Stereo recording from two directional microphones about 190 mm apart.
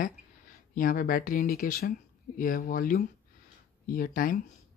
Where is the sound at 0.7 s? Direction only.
45° left (ahead or behind).